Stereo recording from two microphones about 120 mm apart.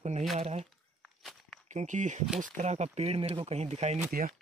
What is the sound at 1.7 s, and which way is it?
Speech, 90° right.